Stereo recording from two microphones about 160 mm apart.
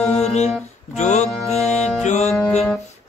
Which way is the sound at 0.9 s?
45° left (ahead or behind).